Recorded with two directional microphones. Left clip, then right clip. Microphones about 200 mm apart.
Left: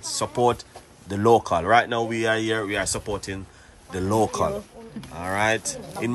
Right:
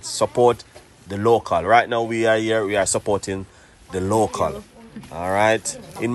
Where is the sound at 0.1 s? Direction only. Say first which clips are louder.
Right 5 dB; 10° left (ahead or behind).